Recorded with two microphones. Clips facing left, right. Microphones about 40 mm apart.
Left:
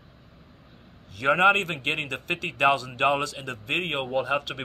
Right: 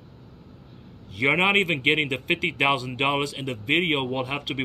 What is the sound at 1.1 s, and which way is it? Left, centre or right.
A man's voice, right.